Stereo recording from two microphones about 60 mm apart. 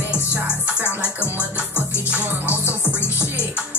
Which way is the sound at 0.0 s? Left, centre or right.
Right.